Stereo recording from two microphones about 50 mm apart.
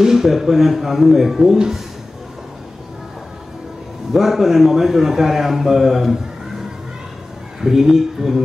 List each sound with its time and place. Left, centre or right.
0.0 s a man's voice: centre
4.1 s a man's voice: centre
7.6 s speech: centre